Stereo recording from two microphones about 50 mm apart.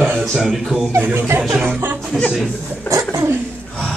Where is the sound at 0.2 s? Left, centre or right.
Centre.